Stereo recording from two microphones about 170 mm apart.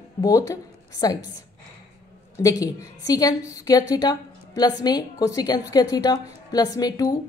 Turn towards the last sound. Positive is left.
turn(degrees=20)  # may be behind; listen again after turning